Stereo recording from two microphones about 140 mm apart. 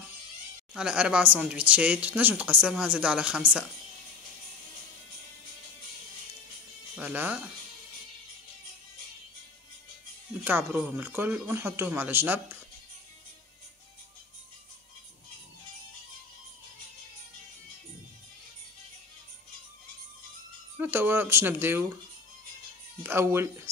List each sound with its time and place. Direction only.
0.7 s speech: 5° right (ahead or behind)
7.0 s speech: 10° right (ahead or behind)
10.4 s speech: 15° right (ahead or behind)
20.7 s speech: 15° right (ahead or behind)
23.0 s speech: 15° right (ahead or behind)